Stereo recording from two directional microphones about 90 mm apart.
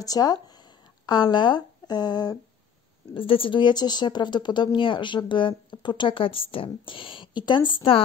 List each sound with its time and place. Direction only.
0.0 s speech: 45° left (ahead or behind)
3.2 s a woman's voice: 80° left